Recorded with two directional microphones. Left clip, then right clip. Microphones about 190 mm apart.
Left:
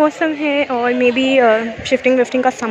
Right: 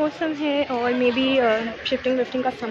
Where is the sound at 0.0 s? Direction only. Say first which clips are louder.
Left 8 dB; 20° left (ahead or behind).